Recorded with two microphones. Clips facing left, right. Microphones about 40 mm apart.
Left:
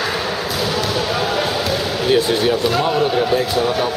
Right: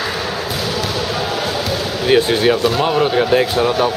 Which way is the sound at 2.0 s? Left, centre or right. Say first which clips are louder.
Right 3 dB; right.